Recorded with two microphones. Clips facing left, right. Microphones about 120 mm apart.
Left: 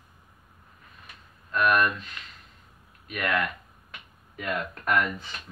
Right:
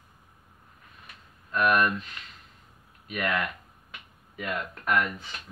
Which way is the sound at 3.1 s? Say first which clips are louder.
Left 1 dB; 10° right (ahead or behind).